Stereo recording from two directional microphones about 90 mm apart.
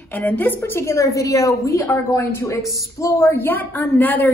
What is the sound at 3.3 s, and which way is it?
A woman's voice, 20° left (ahead or behind).